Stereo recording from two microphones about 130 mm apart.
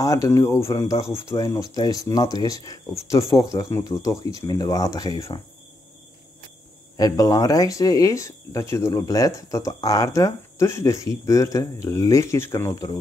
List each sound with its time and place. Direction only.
0.0 s speech: 25° left (ahead or behind)
7.0 s speech: 30° left (ahead or behind)